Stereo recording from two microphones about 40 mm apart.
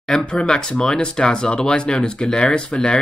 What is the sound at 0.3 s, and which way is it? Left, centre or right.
Speech, left.